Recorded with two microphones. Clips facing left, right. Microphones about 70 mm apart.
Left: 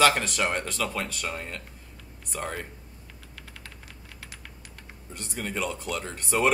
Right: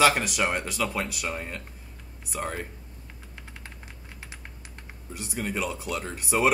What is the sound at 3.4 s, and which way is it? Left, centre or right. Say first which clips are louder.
Typing: right 1 dB; right.